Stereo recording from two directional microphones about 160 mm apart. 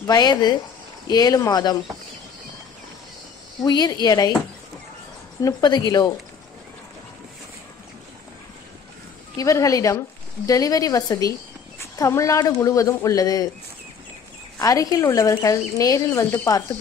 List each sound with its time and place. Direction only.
0.0 s speech: 25° left (ahead or behind)
3.6 s speech: 25° left (ahead or behind)
5.4 s speech: 25° left (ahead or behind)
9.4 s speech: 20° left (ahead or behind)
14.6 s speech: 20° left (ahead or behind)